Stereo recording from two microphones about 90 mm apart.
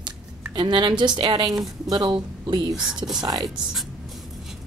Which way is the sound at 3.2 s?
45° right (ahead or behind).